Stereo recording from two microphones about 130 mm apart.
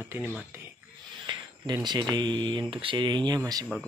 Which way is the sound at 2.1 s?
35° right (ahead or behind).